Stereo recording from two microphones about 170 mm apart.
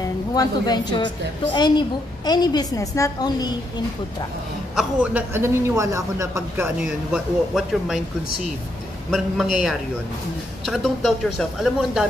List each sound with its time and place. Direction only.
0.3 s a woman's voice: 25° left (ahead or behind)
4.7 s a man's voice: 5° right (ahead or behind)
9.1 s a woman's voice: 5° right (ahead or behind)